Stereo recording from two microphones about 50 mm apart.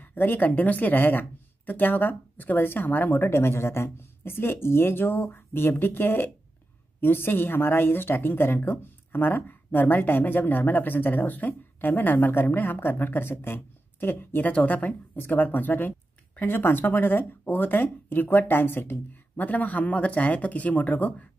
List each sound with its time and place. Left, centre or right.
0.0 s speech: left
3.2 s speech: left